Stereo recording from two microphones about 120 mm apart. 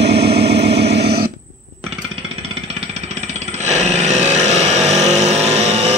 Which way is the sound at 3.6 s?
75° right (ahead or behind).